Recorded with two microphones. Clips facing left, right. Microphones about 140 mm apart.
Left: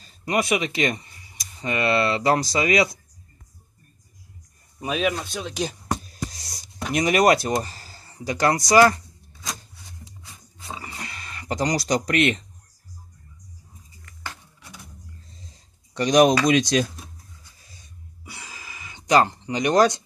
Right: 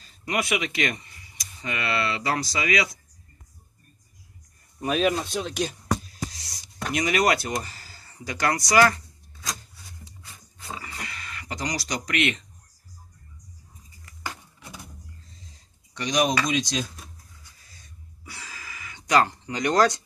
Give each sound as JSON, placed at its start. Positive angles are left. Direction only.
{"t": 0.2, "sound": "speech", "side_deg": 30}
{"t": 4.7, "sound": "speech", "side_deg": 5}
{"t": 5.6, "sound": "speech", "side_deg": 20}
{"t": 6.3, "sound": "music", "side_deg": 40}
{"t": 6.9, "sound": "speech", "side_deg": 40}
{"t": 10.2, "sound": "a sound", "side_deg": 25}
{"t": 14.0, "sound": "a sound", "side_deg": -15}
{"t": 16.0, "sound": "speech", "side_deg": 55}
{"t": 18.2, "sound": "a sound", "side_deg": 20}